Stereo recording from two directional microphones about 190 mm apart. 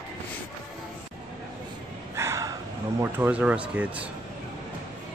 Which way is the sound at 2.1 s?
15° right (ahead or behind).